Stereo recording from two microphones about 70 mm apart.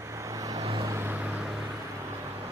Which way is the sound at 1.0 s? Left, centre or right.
Right.